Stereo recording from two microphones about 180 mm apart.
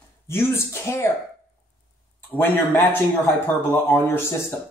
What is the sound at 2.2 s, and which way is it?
Speech, 10° left (ahead or behind).